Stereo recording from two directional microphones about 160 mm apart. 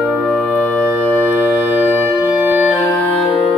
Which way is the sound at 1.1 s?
10° right (ahead or behind).